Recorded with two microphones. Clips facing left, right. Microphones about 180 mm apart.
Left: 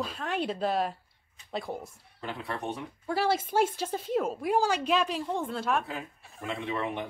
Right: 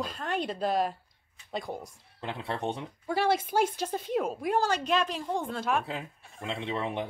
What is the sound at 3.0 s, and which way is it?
A woman's voice, 5° left (ahead or behind).